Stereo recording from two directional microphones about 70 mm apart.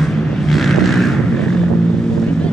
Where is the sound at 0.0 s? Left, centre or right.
Centre.